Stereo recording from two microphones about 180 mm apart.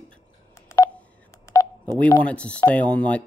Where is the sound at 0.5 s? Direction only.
15° left (ahead or behind).